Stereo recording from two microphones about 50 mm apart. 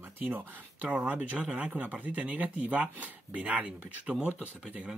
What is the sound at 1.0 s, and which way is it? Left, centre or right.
Speech, right.